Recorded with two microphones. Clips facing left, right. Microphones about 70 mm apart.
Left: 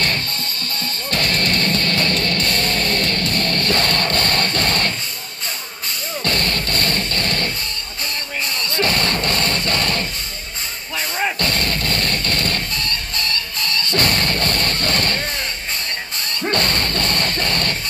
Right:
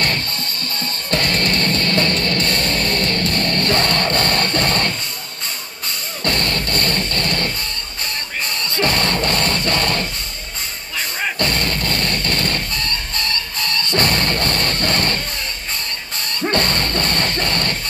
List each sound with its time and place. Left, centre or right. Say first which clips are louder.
1.1 s music: right 2 dB; right
6.2 s music: right 2 dB; right
8.7 s music: right 1 dB; right
11.3 s music: right 1 dB; right
16.4 s music: right 1 dB; right